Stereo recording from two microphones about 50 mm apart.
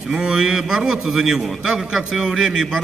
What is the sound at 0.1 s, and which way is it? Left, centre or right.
A man's voice, centre.